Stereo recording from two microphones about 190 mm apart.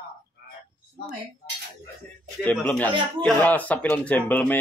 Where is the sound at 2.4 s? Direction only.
10° left (ahead or behind).